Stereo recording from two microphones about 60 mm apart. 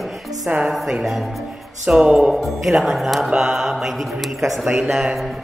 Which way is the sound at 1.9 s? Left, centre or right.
Centre.